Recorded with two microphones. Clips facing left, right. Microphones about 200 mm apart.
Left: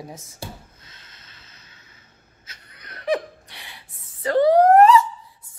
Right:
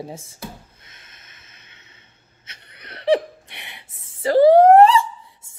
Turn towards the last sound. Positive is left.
turn(degrees=-30)  # may be behind; listen again after turning